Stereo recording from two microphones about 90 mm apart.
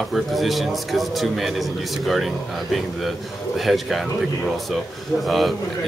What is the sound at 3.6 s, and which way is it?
Speech, centre (ahead or behind).